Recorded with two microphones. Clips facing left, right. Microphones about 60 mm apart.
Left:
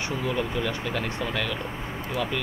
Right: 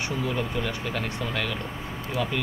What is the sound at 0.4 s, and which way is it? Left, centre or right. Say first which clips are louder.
Speech: left 1 dB; centre.